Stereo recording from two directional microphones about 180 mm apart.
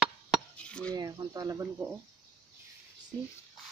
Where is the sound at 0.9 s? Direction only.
20° right (ahead or behind).